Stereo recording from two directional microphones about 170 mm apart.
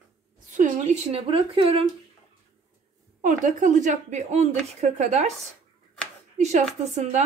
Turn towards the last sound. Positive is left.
turn(degrees=-40)  # may be behind; listen again after turning